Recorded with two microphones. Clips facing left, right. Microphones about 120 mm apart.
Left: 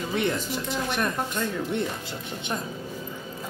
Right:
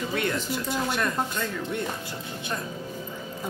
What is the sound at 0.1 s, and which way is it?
Speech, 25° left (ahead or behind).